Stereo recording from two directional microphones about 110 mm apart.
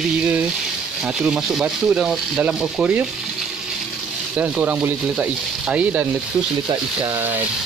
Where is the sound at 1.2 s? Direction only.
5° right (ahead or behind).